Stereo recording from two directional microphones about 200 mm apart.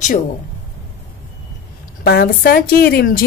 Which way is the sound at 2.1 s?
50° left (ahead or behind).